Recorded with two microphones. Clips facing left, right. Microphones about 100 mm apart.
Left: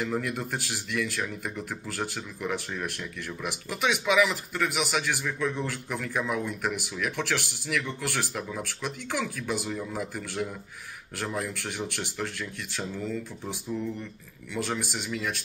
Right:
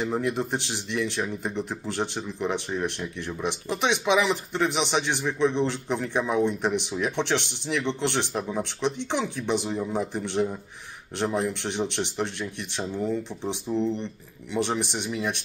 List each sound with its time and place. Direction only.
0.0 s speech: 25° right (ahead or behind)